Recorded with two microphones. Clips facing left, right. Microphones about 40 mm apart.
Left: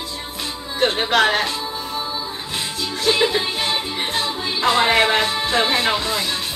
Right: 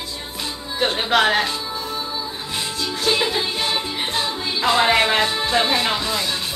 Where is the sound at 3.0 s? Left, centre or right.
Centre.